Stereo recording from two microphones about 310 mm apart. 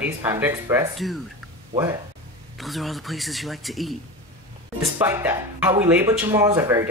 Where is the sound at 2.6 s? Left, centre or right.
Centre.